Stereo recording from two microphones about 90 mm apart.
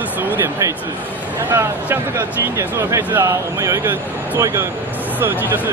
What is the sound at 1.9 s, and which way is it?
Speech, 30° right (ahead or behind).